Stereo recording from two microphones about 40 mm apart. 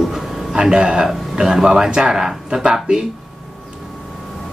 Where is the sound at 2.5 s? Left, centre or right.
Right.